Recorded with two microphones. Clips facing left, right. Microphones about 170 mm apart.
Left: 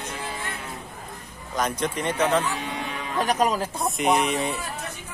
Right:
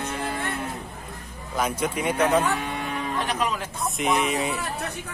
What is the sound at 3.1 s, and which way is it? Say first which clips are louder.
Speech: left 7 dB; 40° left (ahead or behind).